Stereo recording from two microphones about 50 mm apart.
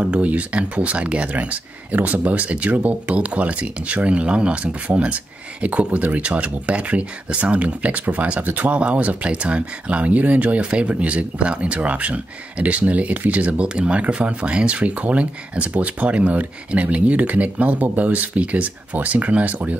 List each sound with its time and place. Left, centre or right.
0.0 s speech: right